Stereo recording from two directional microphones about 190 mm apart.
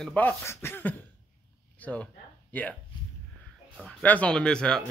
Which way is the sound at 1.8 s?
10° left (ahead or behind).